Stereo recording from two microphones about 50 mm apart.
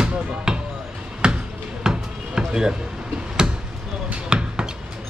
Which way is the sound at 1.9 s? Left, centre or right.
Centre.